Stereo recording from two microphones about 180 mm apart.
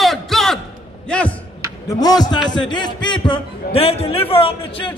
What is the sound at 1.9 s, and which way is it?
A man's voice, 20° left (ahead or behind).